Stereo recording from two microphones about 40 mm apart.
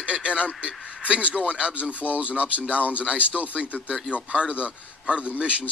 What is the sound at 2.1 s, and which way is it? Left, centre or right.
A man's voice, right.